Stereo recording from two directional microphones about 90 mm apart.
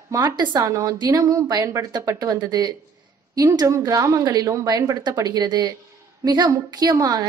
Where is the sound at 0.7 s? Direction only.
35° right (ahead or behind).